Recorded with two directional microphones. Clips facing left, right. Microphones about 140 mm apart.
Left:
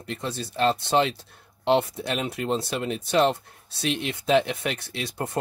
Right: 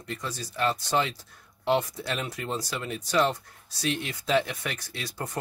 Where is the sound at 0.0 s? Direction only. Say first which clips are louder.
Left 4 dB; 25° left (ahead or behind).